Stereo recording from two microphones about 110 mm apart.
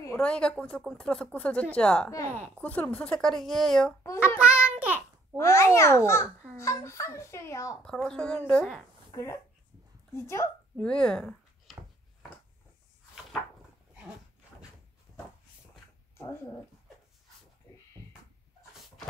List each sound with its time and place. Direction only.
0.2 s speech: 10° left (ahead or behind)
2.0 s speech: 25° left (ahead or behind); by 3.9 s 5° left (ahead or behind)
4.4 s a sound: 10° right (ahead or behind)
5.4 s a child's voice: 25° left (ahead or behind)
7.8 s speech: 10° left (ahead or behind)
9.1 s a child's voice: 25° left (ahead or behind)
10.8 s speech: 10° left (ahead or behind)
16.2 s speech: 25° left (ahead or behind)